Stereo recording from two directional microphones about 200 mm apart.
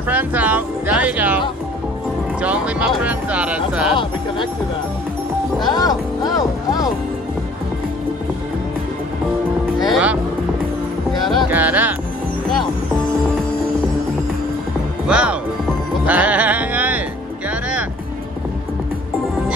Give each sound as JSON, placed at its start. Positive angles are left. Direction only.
{"t": 0.1, "sound": "music", "side_deg": -10}
{"t": 2.4, "sound": "music", "side_deg": -5}
{"t": 5.6, "sound": "music", "side_deg": 20}
{"t": 9.8, "sound": "speech", "side_deg": -5}
{"t": 11.2, "sound": "speech", "side_deg": -5}
{"t": 15.0, "sound": "speech", "side_deg": -5}
{"t": 16.1, "sound": "music", "side_deg": -5}